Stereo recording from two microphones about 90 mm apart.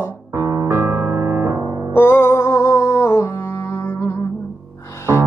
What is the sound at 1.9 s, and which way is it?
Music, 25° left (ahead or behind).